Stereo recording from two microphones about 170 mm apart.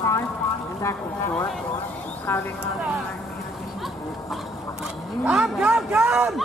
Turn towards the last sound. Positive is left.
turn(degrees=-5)  # may be behind; listen again after turning